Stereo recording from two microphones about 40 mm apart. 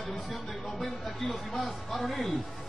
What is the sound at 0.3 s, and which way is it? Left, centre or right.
A man's voice, centre.